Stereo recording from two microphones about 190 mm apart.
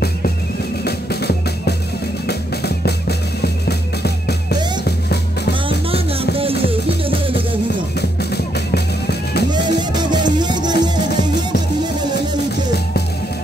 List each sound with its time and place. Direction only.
0.8 s music: 60° left (ahead or behind)
5.7 s music: 30° right (ahead or behind)
8.0 s music: 60° left (ahead or behind)
9.5 s music: 25° right (ahead or behind)